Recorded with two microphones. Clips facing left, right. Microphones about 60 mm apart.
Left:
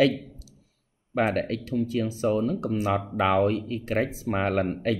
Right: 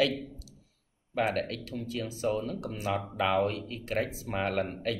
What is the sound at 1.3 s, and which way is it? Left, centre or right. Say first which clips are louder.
Speech: left 5 dB; left.